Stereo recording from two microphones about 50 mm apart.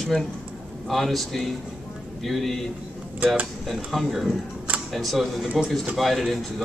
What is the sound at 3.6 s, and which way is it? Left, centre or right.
Speech, centre.